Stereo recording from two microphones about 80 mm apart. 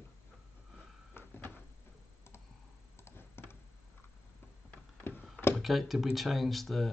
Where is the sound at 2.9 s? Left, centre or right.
Left.